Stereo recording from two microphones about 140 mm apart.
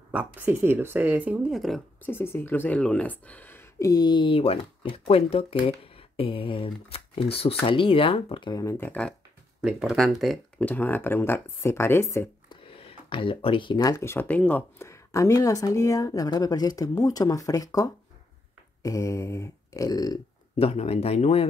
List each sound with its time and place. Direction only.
0.1 s speech: 10° right (ahead or behind)
2.0 s speech: 15° left (ahead or behind)
3.9 s speech: 30° left (ahead or behind)
8.6 s speech: 15° left (ahead or behind)
9.6 s speech: 5° right (ahead or behind); by 12.3 s 20° left (ahead or behind)
12.4 s a sound: 40° left (ahead or behind)
13.9 s speech: 15° left (ahead or behind)
20.5 s speech: 45° left (ahead or behind)